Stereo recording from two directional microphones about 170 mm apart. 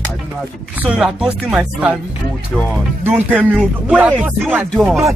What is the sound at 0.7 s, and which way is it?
Speech, 10° right (ahead or behind).